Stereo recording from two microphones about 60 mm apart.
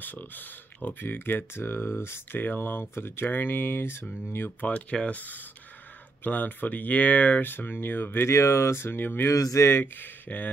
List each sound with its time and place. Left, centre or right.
0.0 s speech: left
2.3 s speech: left
4.6 s speech: left
8.3 s speech: left
9.3 s speech: left
9.7 s speech: left